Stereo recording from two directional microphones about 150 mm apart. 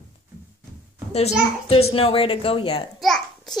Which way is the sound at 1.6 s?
40° left (ahead or behind).